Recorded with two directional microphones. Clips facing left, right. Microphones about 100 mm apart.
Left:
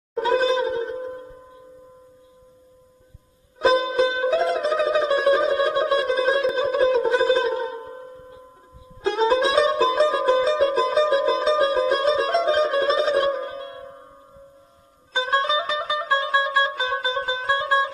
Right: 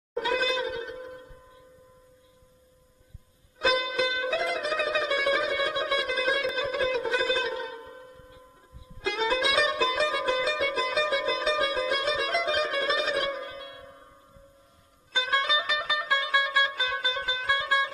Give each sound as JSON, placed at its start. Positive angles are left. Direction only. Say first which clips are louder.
{"t": 0.1, "sound": "a sound", "louder": "left 7 dB", "side_deg": 35}
{"t": 3.5, "sound": "music", "louder": "left 8 dB", "side_deg": 30}
{"t": 15.1, "sound": "music", "louder": "left 6 dB", "side_deg": 30}